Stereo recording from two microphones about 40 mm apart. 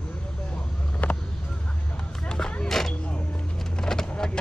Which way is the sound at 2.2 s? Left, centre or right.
Left.